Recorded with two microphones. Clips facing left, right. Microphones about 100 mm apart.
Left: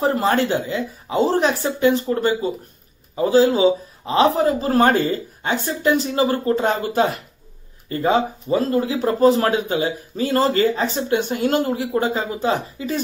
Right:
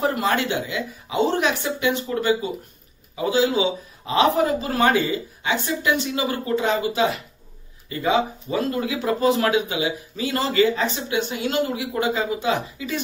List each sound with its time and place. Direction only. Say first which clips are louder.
0.0 s speech: left 3 dB; 35° left (ahead or behind)